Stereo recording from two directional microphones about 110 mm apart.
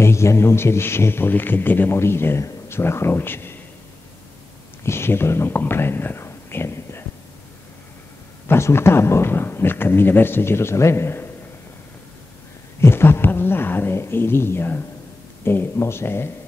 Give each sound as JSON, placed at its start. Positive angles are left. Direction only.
{"t": 0.0, "sound": "a man's voice", "side_deg": 25}
{"t": 4.8, "sound": "speech", "side_deg": 20}
{"t": 8.5, "sound": "a man's voice", "side_deg": 25}
{"t": 12.8, "sound": "a man's voice", "side_deg": 20}